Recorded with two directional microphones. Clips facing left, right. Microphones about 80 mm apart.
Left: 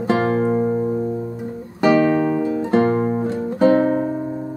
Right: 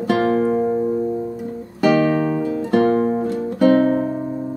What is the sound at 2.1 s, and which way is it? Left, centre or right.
Music, centre.